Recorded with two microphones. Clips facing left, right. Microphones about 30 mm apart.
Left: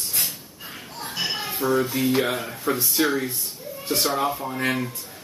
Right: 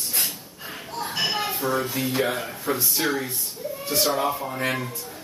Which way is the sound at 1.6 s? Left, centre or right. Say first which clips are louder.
Left 4 dB; centre.